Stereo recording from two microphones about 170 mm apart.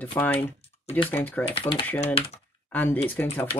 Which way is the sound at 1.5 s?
35° left (ahead or behind).